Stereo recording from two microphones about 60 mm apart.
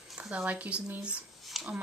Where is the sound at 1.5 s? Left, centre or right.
Centre.